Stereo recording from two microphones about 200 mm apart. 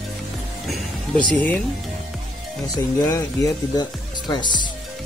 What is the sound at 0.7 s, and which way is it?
Speech, 5° left (ahead or behind).